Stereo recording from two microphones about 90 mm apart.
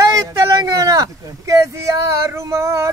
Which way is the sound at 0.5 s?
40° right (ahead or behind).